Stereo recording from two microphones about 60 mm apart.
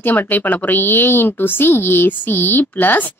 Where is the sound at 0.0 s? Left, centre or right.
Left.